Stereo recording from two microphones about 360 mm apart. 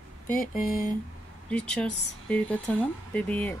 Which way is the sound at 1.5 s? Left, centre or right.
Centre.